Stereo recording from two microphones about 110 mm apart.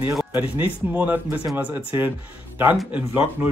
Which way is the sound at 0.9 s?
15° right (ahead or behind).